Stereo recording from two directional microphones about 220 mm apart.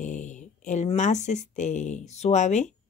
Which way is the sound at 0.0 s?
35° left (ahead or behind).